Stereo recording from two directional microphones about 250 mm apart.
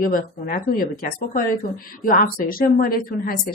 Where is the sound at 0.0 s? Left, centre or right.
Left.